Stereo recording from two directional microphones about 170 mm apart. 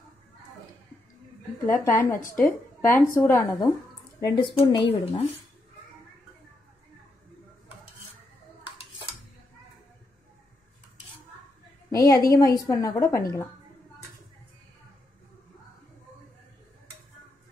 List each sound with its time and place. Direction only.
1.7 s a woman's voice: 15° left (ahead or behind); by 5.2 s 30° left (ahead or behind)
8.6 s dishes: 35° left (ahead or behind)
11.9 s a woman's voice: 20° left (ahead or behind)